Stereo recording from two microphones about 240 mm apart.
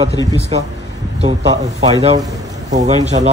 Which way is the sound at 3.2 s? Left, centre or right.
Right.